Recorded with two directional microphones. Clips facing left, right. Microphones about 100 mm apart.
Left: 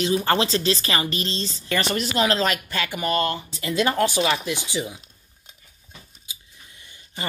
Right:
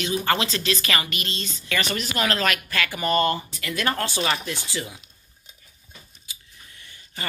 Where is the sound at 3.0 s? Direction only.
Centre (ahead or behind).